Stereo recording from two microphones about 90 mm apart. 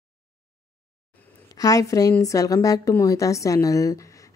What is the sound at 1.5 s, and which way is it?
A woman's voice, 40° left (ahead or behind).